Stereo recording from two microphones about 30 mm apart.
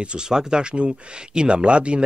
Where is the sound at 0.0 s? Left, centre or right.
Right.